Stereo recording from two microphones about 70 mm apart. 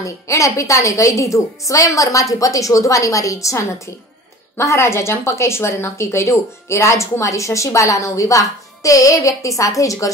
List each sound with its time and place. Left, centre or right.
0.0 s a woman's voice: left